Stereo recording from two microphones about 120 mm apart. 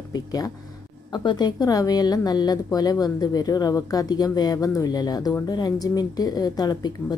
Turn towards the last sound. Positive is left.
turn(degrees=35)  # may be behind; listen again after turning